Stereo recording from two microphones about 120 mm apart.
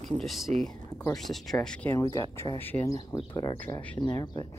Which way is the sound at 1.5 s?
10° left (ahead or behind).